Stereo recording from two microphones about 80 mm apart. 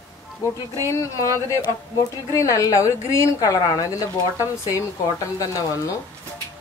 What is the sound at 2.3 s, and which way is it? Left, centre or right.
A woman's voice, left.